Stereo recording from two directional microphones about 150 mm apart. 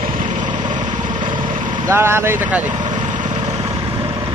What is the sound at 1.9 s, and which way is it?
Speech, 15° right (ahead or behind).